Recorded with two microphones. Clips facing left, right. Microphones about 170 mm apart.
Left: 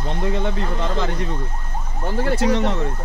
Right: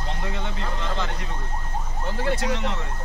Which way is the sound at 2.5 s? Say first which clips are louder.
Left 7 dB; 45° left (ahead or behind).